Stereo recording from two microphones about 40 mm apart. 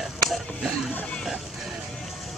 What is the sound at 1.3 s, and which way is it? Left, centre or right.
Music, centre.